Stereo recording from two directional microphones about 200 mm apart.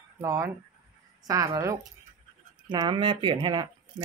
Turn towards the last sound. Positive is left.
turn(degrees=-25)  # may be behind; listen again after turning